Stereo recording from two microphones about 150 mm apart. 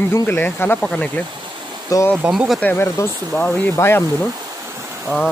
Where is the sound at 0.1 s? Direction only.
15° left (ahead or behind).